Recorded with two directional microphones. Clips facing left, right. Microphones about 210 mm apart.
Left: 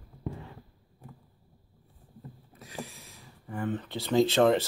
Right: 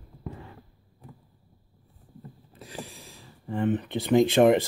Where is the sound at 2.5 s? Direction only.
30° right (ahead or behind).